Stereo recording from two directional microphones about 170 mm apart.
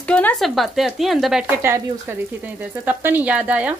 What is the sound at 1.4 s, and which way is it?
Speech, 15° right (ahead or behind).